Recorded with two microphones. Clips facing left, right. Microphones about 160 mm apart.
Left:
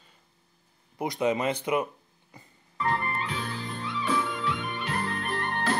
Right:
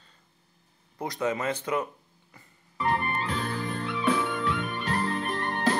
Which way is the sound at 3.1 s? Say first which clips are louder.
Right 3 dB; 40° right (ahead or behind).